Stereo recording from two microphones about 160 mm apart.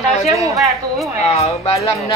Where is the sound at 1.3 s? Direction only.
40° left (ahead or behind).